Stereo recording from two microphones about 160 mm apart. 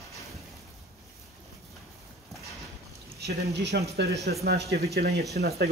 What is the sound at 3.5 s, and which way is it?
Speech, 90° right.